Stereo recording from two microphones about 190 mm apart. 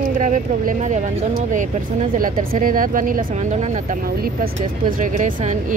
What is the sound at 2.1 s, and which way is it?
A woman's voice, 45° right (ahead or behind).